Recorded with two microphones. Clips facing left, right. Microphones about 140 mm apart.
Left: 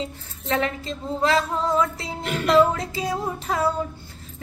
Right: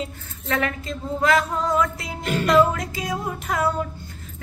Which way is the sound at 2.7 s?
30° left (ahead or behind).